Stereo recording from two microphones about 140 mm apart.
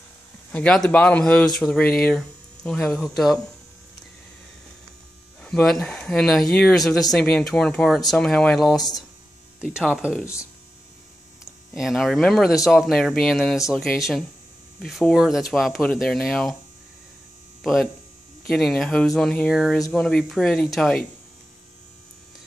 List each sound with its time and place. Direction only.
0.5 s speech: 5° left (ahead or behind)
5.4 s speech: 5° left (ahead or behind)
10.2 s speech: 20° left (ahead or behind)
11.7 s speech: centre (ahead or behind)
18.5 s speech: 5° left (ahead or behind)